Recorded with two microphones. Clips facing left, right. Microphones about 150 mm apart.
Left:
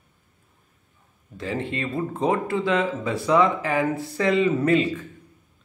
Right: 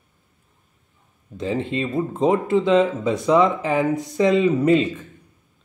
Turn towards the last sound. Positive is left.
turn(degrees=-20)  # may be behind; listen again after turning